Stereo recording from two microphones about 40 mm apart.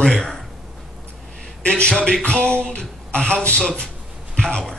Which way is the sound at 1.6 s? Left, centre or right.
Left.